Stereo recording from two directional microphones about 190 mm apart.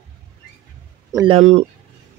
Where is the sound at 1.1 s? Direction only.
30° right (ahead or behind).